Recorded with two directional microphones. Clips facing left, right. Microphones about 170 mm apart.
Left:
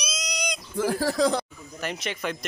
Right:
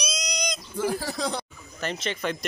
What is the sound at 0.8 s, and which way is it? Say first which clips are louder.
Speech: left 5 dB; 90° left.